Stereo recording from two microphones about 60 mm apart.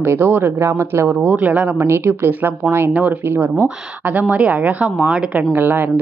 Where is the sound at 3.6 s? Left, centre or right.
Right.